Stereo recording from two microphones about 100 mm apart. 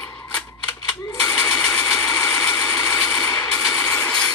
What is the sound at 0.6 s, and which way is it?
Camera, 30° left (ahead or behind).